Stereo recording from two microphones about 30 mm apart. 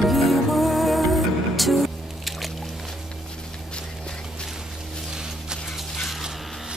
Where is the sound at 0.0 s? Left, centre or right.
Centre.